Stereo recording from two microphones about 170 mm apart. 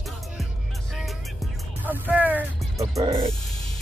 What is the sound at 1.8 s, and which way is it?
Speech, 10° right (ahead or behind).